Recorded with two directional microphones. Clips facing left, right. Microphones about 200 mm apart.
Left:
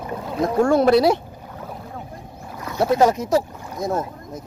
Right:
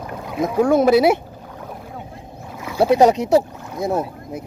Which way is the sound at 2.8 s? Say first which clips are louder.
Right 3 dB; 15° right (ahead or behind).